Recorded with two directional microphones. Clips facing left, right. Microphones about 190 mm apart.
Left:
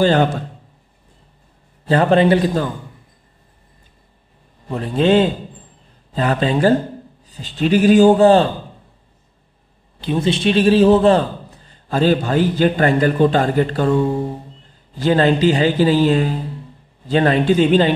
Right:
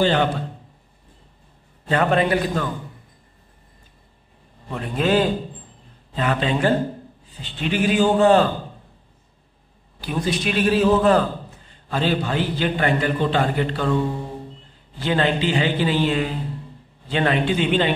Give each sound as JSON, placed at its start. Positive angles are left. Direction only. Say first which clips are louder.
{"t": 0.0, "sound": "a man's voice", "louder": "left 4 dB", "side_deg": 45}
{"t": 1.9, "sound": "speech", "louder": "left 6 dB", "side_deg": 30}
{"t": 4.6, "sound": "a man's voice", "louder": "left 6 dB", "side_deg": 30}
{"t": 6.1, "sound": "speech", "louder": "left 4 dB", "side_deg": 35}
{"t": 9.9, "sound": "a man's voice", "louder": "left 5 dB", "side_deg": 25}
{"t": 11.9, "sound": "a man's voice", "louder": "left 6 dB", "side_deg": 45}
{"t": 15.0, "sound": "speech", "louder": "left 6 dB", "side_deg": 40}